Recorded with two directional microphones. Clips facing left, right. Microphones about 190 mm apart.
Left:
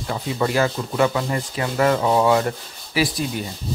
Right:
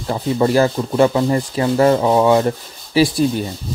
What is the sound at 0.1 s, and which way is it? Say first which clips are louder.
Speech: right 6 dB; 35° right (ahead or behind).